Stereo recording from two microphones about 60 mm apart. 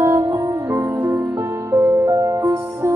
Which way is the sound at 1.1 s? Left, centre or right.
Right.